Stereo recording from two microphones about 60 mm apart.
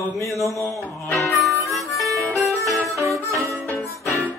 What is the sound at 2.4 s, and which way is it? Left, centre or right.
Music, centre.